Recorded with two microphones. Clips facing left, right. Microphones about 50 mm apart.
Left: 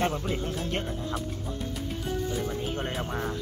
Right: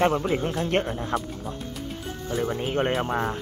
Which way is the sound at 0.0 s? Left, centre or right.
Right.